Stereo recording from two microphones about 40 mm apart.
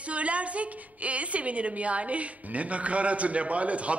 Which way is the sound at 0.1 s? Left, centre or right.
Right.